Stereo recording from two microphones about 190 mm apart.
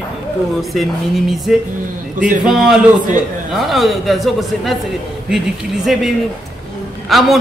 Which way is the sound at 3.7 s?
Centre (ahead or behind).